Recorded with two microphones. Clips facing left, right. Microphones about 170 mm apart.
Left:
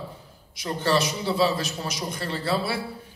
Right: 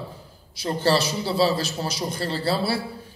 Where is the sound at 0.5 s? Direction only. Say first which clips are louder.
Right 2 dB; 30° right (ahead or behind).